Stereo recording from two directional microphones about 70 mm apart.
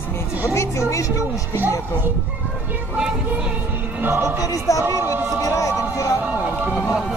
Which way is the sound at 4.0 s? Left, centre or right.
Right.